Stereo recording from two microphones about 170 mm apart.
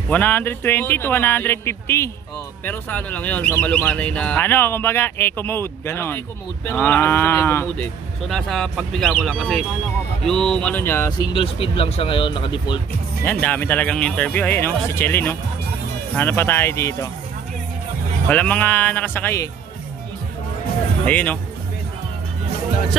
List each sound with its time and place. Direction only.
0.1 s speech: 10° left (ahead or behind)
8.3 s speech: centre (ahead or behind); by 12.8 s 25° left (ahead or behind)
13.2 s speech: 10° left (ahead or behind)
18.3 s speech: 10° left (ahead or behind)
21.0 s speech: 10° left (ahead or behind)